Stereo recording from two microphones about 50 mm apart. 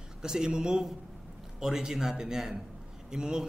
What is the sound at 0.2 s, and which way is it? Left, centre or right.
A man's voice, centre.